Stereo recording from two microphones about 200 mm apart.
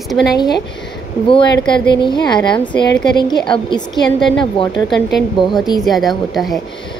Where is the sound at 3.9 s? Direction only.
Centre (ahead or behind).